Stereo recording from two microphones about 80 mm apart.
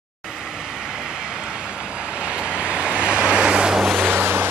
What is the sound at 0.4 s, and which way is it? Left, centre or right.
Vehicle, centre.